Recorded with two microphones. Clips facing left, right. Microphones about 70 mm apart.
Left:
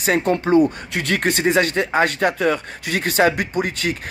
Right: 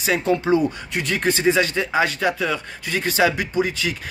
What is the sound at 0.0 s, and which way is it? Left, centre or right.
Speech, left.